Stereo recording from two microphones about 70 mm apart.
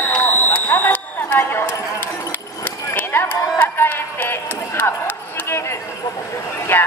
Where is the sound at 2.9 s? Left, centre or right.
Left.